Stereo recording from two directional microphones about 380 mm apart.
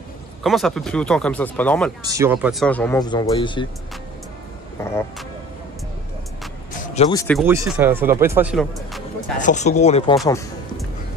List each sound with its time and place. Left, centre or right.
0.4 s speech: centre
2.0 s speech: centre
6.8 s speech: centre
9.4 s speech: centre
10.1 s music: centre